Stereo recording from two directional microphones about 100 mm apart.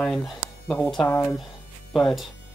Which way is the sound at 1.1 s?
25° left (ahead or behind).